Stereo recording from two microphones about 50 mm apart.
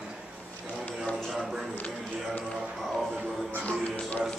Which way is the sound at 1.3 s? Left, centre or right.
Centre.